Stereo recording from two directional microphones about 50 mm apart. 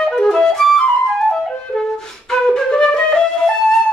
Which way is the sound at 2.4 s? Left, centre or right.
Centre.